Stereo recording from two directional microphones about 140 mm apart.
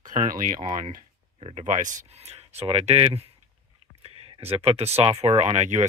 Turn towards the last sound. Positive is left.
turn(degrees=-55)  # may be behind; listen again after turning